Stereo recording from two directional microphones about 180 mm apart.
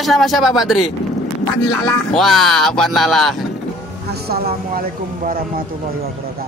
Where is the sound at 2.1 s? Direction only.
Centre (ahead or behind).